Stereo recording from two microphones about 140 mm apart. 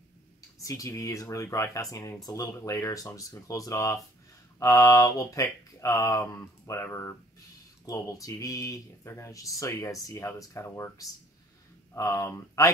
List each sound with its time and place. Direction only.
0.6 s speech: 25° left (ahead or behind)